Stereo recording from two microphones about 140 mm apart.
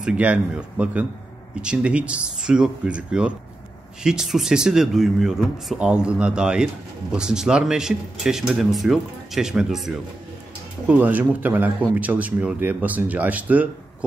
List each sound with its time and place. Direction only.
0.0 s a man's voice: 10° right (ahead or behind)